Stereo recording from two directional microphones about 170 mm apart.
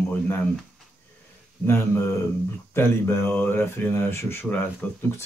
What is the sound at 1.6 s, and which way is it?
Speech, 15° left (ahead or behind).